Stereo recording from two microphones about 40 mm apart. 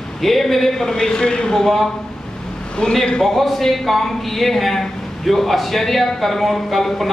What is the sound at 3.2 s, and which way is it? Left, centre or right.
A man's voice, centre.